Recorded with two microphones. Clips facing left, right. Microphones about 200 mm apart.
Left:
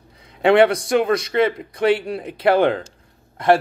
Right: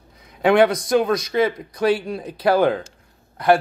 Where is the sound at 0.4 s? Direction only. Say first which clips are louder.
Left 1 dB; 25° left (ahead or behind).